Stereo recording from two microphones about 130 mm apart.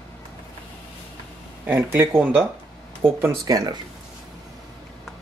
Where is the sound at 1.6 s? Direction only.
15° right (ahead or behind).